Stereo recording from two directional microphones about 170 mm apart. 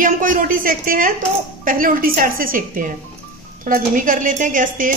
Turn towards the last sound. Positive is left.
turn(degrees=-50)  # may be behind; listen again after turning